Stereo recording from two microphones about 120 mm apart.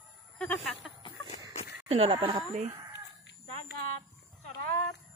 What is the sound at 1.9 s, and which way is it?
Speech, 50° right (ahead or behind).